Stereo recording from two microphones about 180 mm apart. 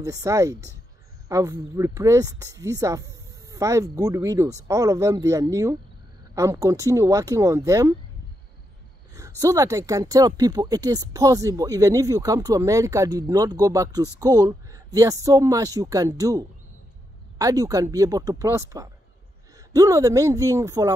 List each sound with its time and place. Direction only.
0.0 s speech: 20° right (ahead or behind)
9.4 s speech: 20° right (ahead or behind)